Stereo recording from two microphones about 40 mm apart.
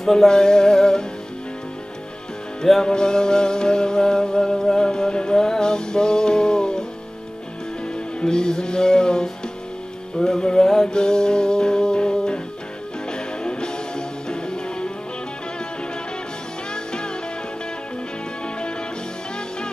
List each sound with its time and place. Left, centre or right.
0.0 s music: centre
2.6 s music: centre
7.8 s music: left
16.7 s music: left